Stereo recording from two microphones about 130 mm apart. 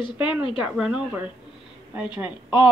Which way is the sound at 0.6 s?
5° right (ahead or behind).